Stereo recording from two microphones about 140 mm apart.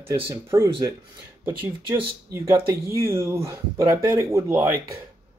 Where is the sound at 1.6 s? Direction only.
35° right (ahead or behind).